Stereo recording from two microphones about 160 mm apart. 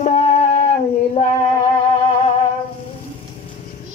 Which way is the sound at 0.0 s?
45° left (ahead or behind).